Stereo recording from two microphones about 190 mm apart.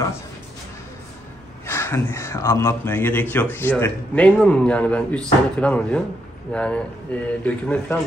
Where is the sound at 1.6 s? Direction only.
15° left (ahead or behind).